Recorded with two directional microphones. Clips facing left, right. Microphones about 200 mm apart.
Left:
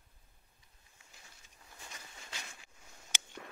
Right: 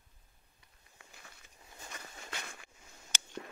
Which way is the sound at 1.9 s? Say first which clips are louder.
Right 6 dB; 60° right (ahead or behind).